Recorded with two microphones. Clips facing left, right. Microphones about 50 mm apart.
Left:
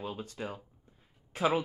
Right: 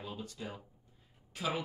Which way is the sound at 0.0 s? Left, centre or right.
Left.